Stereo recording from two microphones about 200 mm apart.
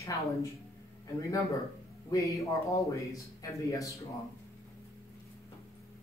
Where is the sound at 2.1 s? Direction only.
15° left (ahead or behind).